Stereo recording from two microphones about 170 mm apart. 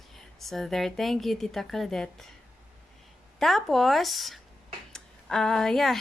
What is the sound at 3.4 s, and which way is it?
A woman's voice, centre (ahead or behind).